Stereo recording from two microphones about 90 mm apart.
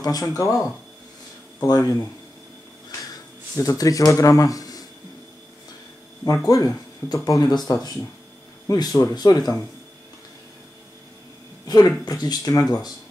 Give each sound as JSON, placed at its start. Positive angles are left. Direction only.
{"t": 0.0, "sound": "speech", "side_deg": 45}
{"t": 3.1, "sound": "speech", "side_deg": 40}
{"t": 6.3, "sound": "speech", "side_deg": 35}
{"t": 11.6, "sound": "speech", "side_deg": 45}